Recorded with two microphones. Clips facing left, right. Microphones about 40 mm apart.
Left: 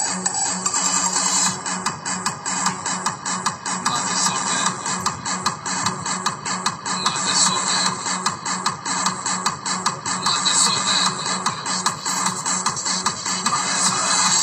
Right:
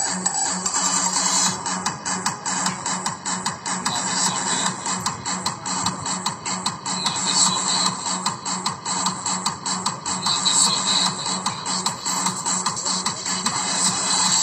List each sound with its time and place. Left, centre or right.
0.1 s music: right
0.7 s music: left
3.8 s music: centre
6.9 s music: centre